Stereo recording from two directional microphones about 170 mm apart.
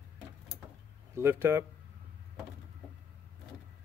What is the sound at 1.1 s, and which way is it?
Speech, 15° right (ahead or behind).